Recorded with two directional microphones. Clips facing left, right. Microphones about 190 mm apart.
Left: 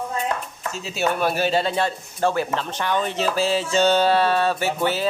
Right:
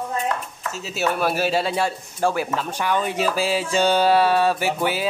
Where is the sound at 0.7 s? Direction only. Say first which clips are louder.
Even; 5° right (ahead or behind).